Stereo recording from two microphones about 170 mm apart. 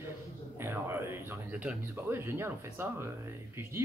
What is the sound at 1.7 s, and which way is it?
A man's voice, 15° right (ahead or behind).